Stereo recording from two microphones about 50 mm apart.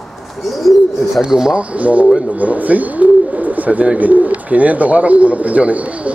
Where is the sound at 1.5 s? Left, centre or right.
Right.